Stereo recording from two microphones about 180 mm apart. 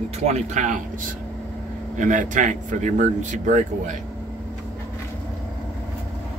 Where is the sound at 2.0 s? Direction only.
45° right (ahead or behind).